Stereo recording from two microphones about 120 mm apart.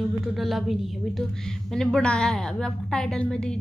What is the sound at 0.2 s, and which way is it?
A woman's voice, centre (ahead or behind).